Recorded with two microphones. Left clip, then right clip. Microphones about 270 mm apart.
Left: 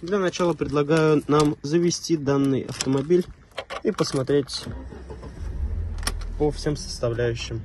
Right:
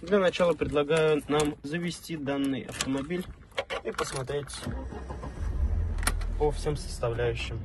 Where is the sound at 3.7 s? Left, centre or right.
Left.